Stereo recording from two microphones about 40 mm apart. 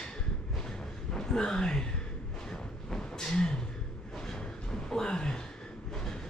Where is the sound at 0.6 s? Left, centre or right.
Centre.